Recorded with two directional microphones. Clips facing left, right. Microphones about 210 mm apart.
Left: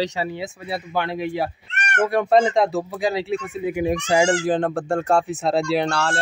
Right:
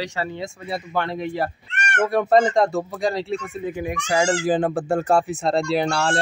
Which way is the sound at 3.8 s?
30° left (ahead or behind).